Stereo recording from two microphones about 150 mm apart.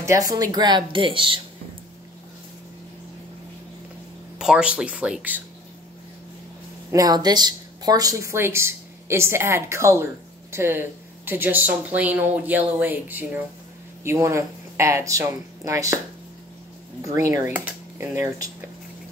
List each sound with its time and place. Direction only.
0.0 s speech: 20° right (ahead or behind)
4.4 s speech: 5° right (ahead or behind)
6.9 s speech: 25° right (ahead or behind)
17.0 s speech: 20° right (ahead or behind)
17.5 s speech: 10° right (ahead or behind)